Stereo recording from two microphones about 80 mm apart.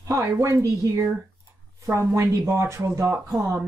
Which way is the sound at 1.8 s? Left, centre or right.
Right.